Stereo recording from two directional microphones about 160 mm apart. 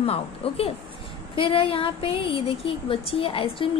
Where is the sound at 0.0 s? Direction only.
40° left (ahead or behind).